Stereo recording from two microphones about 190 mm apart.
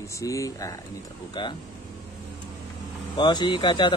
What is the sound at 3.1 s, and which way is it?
Speech, 25° left (ahead or behind).